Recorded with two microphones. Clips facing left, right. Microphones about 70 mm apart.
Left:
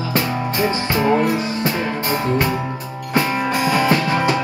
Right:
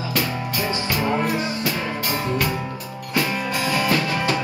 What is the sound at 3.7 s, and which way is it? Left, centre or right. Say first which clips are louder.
Music: left 4 dB; left.